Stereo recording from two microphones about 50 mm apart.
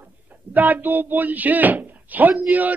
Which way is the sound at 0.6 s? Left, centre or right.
Right.